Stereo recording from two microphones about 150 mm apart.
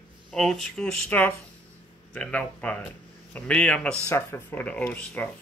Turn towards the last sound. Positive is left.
turn(degrees=10)  # may be behind; listen again after turning